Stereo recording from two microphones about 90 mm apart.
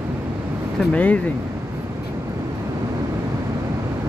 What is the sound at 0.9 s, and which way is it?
Speech, 15° left (ahead or behind).